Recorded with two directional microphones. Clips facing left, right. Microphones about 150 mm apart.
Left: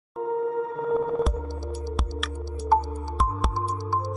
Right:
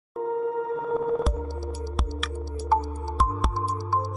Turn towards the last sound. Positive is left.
turn(degrees=0)  # may be behind; listen again after turning